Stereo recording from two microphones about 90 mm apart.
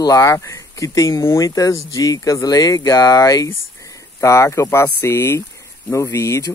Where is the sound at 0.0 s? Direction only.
40° left (ahead or behind).